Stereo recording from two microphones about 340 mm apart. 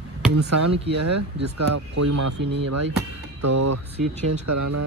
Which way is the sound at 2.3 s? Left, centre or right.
Right.